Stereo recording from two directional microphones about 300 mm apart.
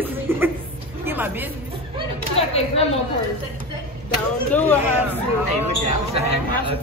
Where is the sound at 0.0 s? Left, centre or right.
Centre.